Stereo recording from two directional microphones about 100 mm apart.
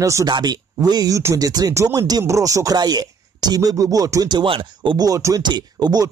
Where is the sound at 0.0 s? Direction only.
30° right (ahead or behind).